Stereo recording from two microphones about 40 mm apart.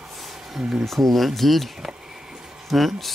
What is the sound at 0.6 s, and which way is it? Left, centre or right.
Speech, centre.